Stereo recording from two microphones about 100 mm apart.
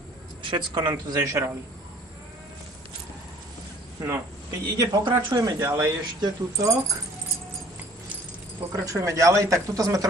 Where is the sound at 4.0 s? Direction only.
35° right (ahead or behind).